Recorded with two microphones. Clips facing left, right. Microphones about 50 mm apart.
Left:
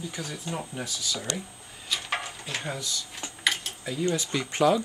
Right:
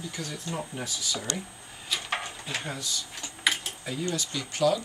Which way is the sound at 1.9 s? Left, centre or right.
Centre.